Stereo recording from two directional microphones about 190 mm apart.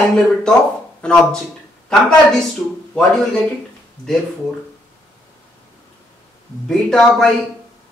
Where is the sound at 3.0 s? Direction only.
5° left (ahead or behind).